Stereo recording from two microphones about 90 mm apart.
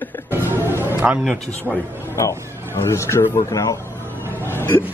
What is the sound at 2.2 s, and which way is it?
Speech, 30° left (ahead or behind).